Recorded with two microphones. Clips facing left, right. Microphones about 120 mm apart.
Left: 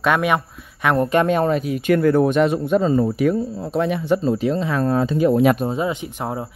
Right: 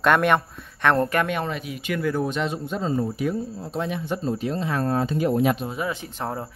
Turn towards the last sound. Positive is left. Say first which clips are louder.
# left 4 dB
turn(degrees=15)  # may be behind; listen again after turning